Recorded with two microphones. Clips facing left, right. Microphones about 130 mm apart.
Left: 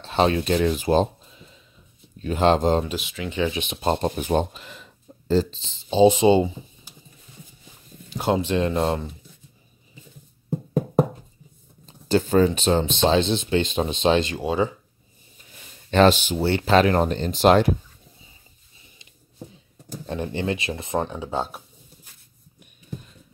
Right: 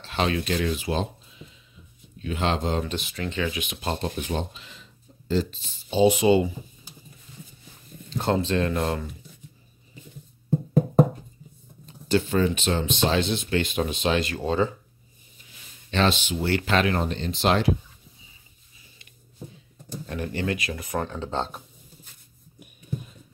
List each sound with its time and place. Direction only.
0.1 s speech: 35° left (ahead or behind)
2.1 s speech: 40° left (ahead or behind)
2.9 s speech: centre (ahead or behind)
3.3 s speech: 20° left (ahead or behind)
4.2 s speech: 50° left (ahead or behind)
5.3 s speech: 30° left (ahead or behind)
8.1 s speech: 15° left (ahead or behind)
11.8 s speech: 35° left (ahead or behind)
14.4 s speech: 10° left (ahead or behind)
15.9 s speech: 45° left (ahead or behind)
16.4 s speech: 30° left (ahead or behind); by 17.7 s 45° left (ahead or behind)
20.1 s speech: 25° left (ahead or behind); by 22.1 s 10° left (ahead or behind)